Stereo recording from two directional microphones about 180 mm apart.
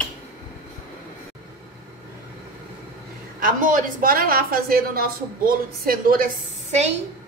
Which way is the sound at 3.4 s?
50° right (ahead or behind).